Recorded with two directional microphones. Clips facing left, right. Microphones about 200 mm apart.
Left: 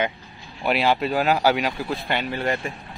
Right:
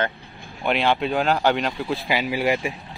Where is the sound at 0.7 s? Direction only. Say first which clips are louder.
Even; 5° left (ahead or behind).